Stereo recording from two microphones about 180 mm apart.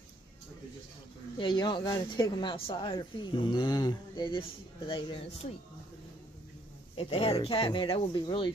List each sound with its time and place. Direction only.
1.4 s speech: 25° left (ahead or behind)
7.0 s speech: 30° left (ahead or behind)